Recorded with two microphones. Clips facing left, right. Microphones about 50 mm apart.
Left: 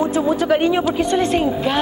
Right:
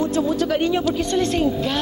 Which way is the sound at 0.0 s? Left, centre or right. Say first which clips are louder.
Left 2 dB; centre.